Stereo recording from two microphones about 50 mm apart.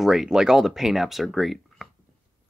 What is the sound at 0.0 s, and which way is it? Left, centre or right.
Speech, centre.